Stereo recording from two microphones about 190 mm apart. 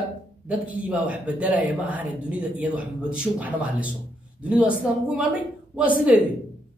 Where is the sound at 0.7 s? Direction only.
5° right (ahead or behind).